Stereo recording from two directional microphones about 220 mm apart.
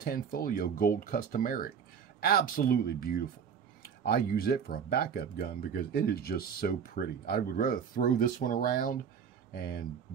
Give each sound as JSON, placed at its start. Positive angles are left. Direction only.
{"t": 0.0, "sound": "speech", "side_deg": 40}